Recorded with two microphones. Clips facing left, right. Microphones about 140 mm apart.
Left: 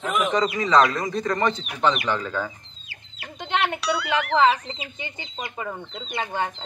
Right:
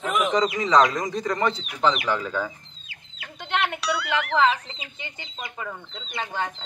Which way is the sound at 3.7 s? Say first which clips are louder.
Left 2 dB; centre (ahead or behind).